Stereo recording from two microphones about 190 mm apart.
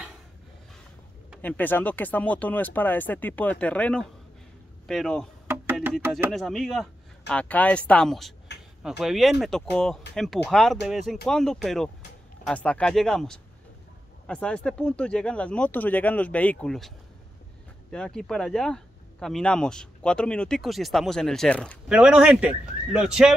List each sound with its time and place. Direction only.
1.4 s speech: 10° left (ahead or behind)
5.5 s a sound: 10° right (ahead or behind)
6.3 s speech: centre (ahead or behind)
8.5 s a sound: 65° left (ahead or behind)
8.8 s speech: centre (ahead or behind)
17.9 s speech: 5° left (ahead or behind)
21.8 s speech: 5° right (ahead or behind)